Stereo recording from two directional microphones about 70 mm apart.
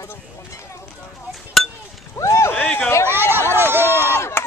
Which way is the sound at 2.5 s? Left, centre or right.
Centre.